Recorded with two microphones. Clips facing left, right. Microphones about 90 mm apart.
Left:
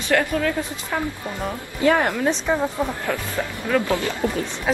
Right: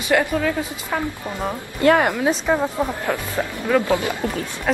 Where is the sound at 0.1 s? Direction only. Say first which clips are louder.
Right 1 dB; 5° right (ahead or behind).